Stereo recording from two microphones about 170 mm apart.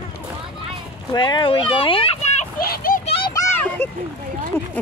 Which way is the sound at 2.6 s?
60° left (ahead or behind).